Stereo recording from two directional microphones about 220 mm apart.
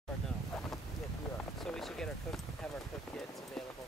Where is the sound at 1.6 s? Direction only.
Centre (ahead or behind).